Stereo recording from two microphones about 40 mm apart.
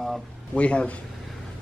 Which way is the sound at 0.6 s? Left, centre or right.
Left.